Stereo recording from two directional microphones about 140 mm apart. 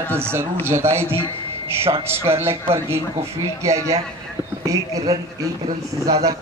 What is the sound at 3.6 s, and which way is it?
Speech, 20° right (ahead or behind).